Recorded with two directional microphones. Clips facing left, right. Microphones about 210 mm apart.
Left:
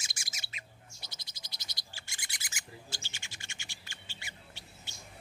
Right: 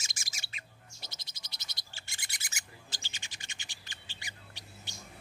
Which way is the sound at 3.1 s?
15° right (ahead or behind).